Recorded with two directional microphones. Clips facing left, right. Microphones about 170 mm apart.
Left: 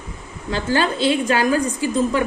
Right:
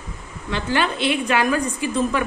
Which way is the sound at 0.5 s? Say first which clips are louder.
Left 2 dB; 35° left (ahead or behind).